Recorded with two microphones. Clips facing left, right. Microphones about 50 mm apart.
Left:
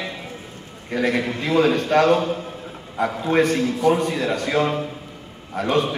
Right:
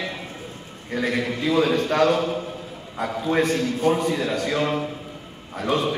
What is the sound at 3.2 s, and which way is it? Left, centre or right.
A man's voice, left.